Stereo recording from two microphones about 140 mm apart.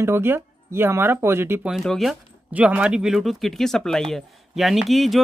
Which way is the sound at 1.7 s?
Centre (ahead or behind).